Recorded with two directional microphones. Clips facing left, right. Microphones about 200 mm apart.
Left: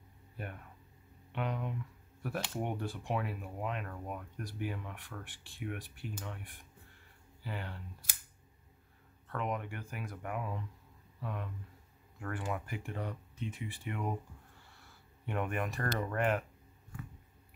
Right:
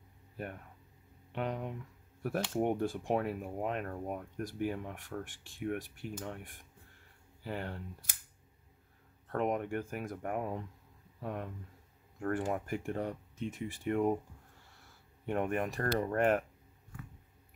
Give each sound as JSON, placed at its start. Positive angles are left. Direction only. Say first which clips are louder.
{"t": 0.4, "sound": "speech", "louder": "right 3 dB", "side_deg": -40}
{"t": 9.3, "sound": "speech", "louder": "right 5 dB", "side_deg": -45}
{"t": 15.2, "sound": "speech", "louder": "right 3 dB", "side_deg": -40}